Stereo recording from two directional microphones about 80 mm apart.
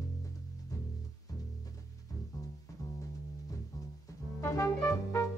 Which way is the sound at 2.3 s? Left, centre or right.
Left.